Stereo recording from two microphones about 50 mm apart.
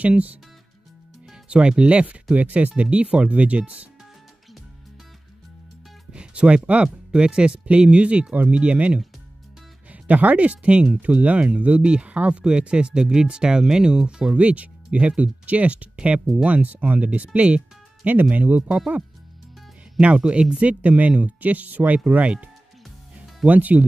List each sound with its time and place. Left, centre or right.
0.0 s speech: right
6.1 s speech: right
20.0 s speech: right
23.1 s music: right